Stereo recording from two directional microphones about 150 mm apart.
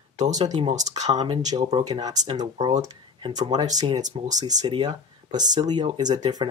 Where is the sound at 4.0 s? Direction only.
50° right (ahead or behind).